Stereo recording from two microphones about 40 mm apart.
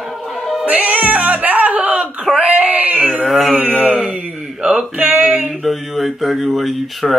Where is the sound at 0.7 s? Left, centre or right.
Right.